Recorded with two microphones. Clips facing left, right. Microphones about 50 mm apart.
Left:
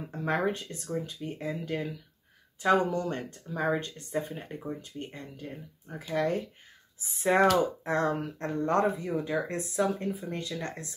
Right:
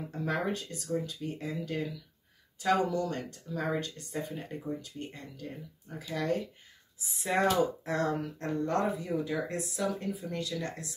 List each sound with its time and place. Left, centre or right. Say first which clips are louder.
0.5 s speech: left 1 dB; left